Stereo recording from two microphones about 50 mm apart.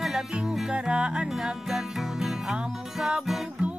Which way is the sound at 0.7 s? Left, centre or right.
Centre.